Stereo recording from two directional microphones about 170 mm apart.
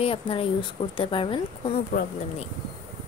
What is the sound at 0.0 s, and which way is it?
A woman's voice, 35° left (ahead or behind).